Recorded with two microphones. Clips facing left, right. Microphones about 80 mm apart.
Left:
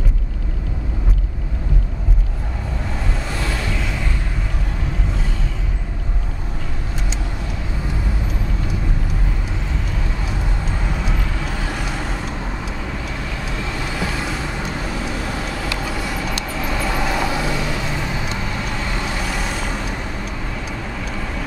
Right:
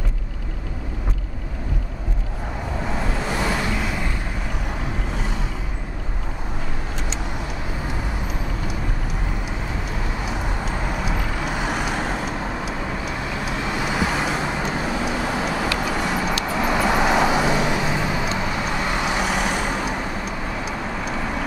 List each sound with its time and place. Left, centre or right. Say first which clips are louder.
3.3 s vehicle: right 2 dB; centre
11.1 s vehicle: right 1 dB; centre
13.5 s vehicle: right 3 dB; centre
21.0 s vehicle: right 2 dB; centre